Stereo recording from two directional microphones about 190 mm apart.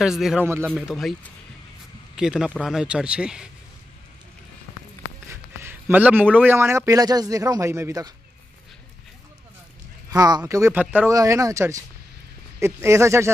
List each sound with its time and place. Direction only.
0.0 s speech: centre (ahead or behind)
0.5 s speech: 15° right (ahead or behind)
0.7 s speech: centre (ahead or behind)
2.1 s speech: 5° right (ahead or behind)
5.3 s a man's voice: 10° right (ahead or behind)
10.1 s speech: 20° right (ahead or behind)